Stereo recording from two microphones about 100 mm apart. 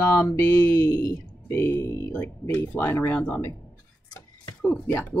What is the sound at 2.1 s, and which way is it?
Speech, 15° left (ahead or behind).